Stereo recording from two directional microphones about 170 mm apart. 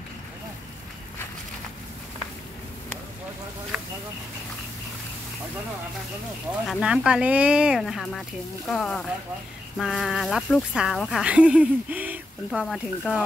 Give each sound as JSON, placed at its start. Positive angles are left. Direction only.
{"t": 6.7, "sound": "speech", "side_deg": -5}